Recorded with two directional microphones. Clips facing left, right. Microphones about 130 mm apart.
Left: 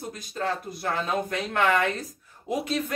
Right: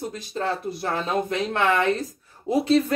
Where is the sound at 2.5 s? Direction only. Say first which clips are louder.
Right 8 dB; 30° right (ahead or behind).